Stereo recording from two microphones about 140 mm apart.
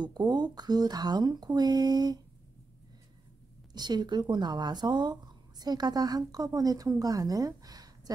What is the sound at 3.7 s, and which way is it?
Speech, 30° right (ahead or behind).